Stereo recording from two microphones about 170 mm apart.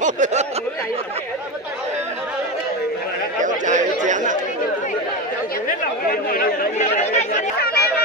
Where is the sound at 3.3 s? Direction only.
50° right (ahead or behind).